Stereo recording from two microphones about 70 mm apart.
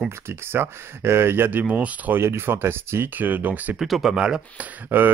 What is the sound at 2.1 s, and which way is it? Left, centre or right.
Speech, right.